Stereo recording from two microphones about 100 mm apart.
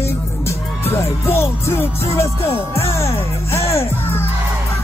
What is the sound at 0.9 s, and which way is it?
Music, 25° left (ahead or behind).